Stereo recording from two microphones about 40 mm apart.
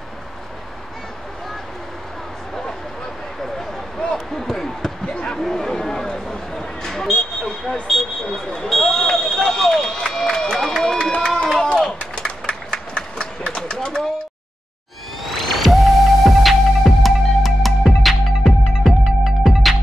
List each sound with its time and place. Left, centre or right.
4.1 s basketball bounce: centre
5.1 s basketball bounce: left
5.4 s a sound: centre
8.6 s run: centre
15.2 s music: centre
19.2 s music: centre